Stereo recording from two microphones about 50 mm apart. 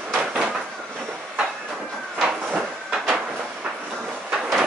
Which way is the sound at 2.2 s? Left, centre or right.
Centre.